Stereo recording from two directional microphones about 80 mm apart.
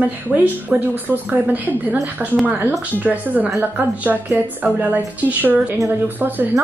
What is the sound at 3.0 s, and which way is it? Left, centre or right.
Speech, centre.